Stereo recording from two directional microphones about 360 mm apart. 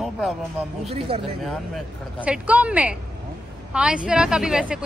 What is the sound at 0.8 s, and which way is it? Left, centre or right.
Speech, centre.